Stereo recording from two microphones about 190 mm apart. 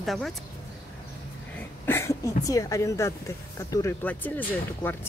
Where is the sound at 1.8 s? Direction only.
15° left (ahead or behind).